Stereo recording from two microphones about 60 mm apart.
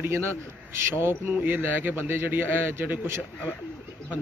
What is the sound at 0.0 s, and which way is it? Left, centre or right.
A man's voice, right.